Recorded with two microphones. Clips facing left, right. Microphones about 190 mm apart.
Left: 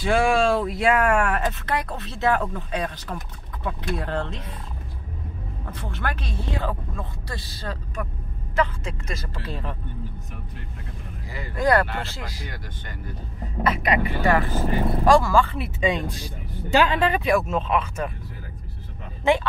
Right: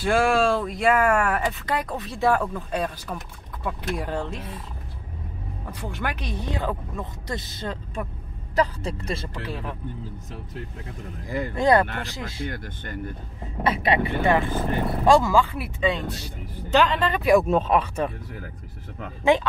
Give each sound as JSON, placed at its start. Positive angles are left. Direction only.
{"t": 0.0, "sound": "speech", "side_deg": 0}
{"t": 5.7, "sound": "speech", "side_deg": -15}
{"t": 8.5, "sound": "speech", "side_deg": -35}
{"t": 9.3, "sound": "speech", "side_deg": -10}
{"t": 11.2, "sound": "speech", "side_deg": -50}
{"t": 11.5, "sound": "speech", "side_deg": -20}
{"t": 13.7, "sound": "speech", "side_deg": -30}
{"t": 15.8, "sound": "speech", "side_deg": 10}
{"t": 17.4, "sound": "speech", "side_deg": -35}